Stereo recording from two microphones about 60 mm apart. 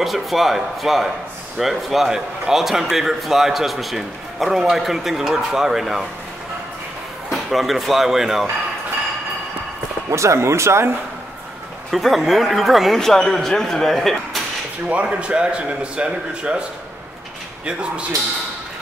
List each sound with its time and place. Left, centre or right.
0.0 s a man's voice: centre
7.2 s a man's voice: centre
10.0 s speech: right
11.9 s a man's voice: centre
14.9 s speech: right